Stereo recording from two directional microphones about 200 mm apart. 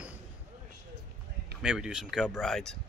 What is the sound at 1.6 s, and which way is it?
Speech, 5° right (ahead or behind).